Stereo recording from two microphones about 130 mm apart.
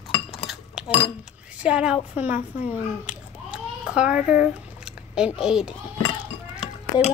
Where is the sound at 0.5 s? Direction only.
5° right (ahead or behind).